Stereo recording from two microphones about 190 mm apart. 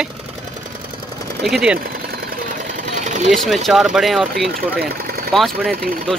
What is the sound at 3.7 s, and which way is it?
Speech, centre (ahead or behind).